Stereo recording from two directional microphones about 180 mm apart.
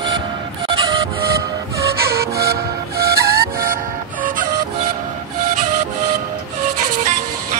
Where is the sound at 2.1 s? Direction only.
60° right (ahead or behind).